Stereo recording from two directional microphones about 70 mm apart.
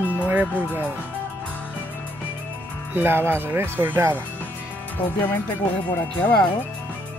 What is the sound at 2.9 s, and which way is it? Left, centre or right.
Speech, right.